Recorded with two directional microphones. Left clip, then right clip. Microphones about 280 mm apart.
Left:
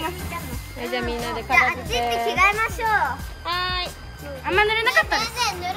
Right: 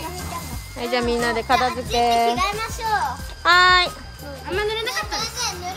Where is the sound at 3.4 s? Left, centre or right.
Right.